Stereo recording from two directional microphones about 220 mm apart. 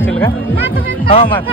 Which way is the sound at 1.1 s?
30° left (ahead or behind).